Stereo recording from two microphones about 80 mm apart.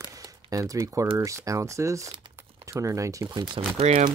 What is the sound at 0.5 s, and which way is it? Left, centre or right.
Speech, right.